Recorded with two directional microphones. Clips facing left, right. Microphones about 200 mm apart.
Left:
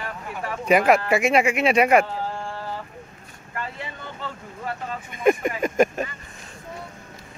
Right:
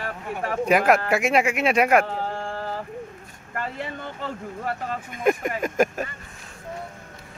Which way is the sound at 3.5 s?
50° right (ahead or behind).